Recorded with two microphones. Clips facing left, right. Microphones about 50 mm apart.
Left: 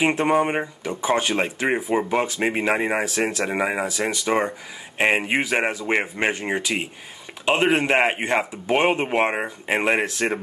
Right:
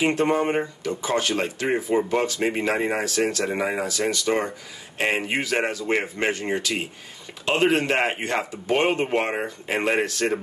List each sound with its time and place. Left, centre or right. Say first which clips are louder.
0.0 s speech: left 2 dB; left